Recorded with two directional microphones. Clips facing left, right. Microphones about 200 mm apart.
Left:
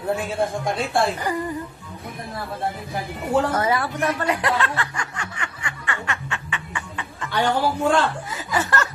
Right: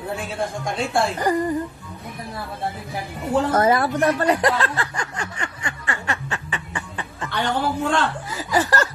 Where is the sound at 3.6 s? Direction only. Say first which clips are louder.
Right 4 dB; 40° right (ahead or behind).